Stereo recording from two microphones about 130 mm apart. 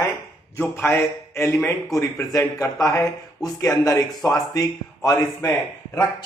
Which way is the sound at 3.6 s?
25° left (ahead or behind).